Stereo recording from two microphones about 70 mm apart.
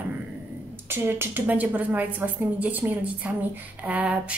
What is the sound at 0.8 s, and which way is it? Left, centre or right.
Speech, right.